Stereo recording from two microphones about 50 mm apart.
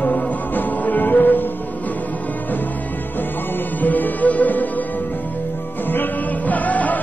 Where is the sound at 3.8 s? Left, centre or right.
Left.